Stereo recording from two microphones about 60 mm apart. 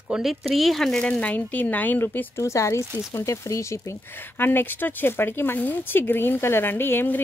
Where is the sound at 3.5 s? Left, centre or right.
Left.